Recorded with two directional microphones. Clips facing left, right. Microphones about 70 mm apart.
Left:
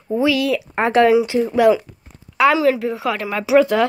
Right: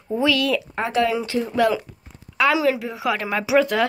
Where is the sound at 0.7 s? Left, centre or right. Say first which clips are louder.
Left 11 dB; left.